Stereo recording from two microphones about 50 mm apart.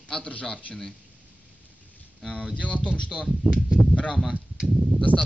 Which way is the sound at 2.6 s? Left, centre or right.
Left.